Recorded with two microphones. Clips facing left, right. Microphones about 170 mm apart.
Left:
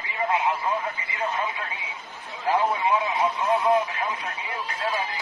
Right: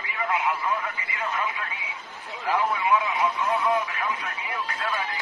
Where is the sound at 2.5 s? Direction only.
25° left (ahead or behind).